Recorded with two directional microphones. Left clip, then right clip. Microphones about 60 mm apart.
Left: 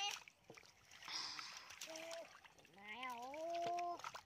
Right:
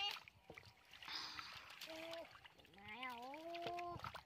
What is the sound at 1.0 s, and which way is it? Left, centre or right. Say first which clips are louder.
Rowboat: left 1 dB; left.